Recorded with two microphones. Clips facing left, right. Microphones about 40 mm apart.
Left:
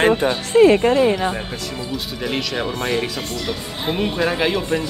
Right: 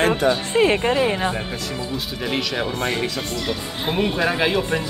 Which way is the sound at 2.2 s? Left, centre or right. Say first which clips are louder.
Left 1 dB; centre.